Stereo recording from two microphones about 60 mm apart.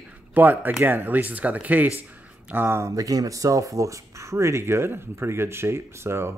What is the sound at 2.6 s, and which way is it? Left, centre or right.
Speech, right.